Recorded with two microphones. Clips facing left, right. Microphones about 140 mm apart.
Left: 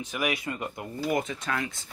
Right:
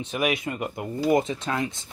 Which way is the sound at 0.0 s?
25° right (ahead or behind).